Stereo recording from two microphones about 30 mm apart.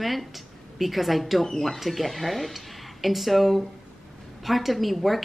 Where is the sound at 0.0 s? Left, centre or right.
Centre.